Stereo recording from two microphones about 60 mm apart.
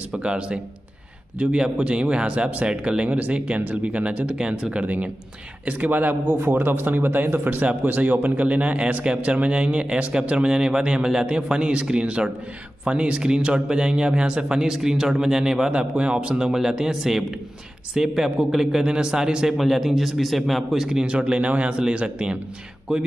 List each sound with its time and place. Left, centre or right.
0.2 s speech: centre
16.5 s speech: centre